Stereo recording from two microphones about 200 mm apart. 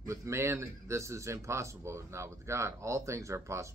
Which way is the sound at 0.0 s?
15° right (ahead or behind).